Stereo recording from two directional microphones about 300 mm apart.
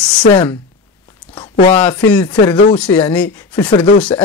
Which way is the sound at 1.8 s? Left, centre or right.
Centre.